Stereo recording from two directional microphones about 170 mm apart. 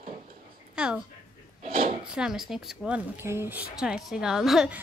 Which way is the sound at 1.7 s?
55° right (ahead or behind).